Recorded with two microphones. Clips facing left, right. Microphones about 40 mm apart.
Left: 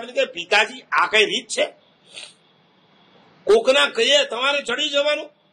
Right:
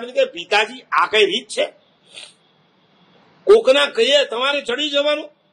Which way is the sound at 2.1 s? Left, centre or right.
Centre.